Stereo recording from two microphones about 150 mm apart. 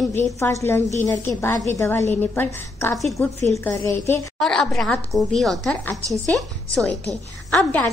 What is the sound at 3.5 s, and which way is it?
Speech, 15° left (ahead or behind).